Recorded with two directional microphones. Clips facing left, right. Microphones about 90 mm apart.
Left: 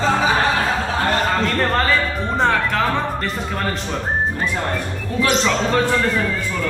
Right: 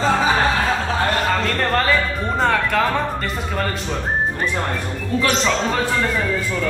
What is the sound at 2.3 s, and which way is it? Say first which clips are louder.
Speech: even; centre (ahead or behind).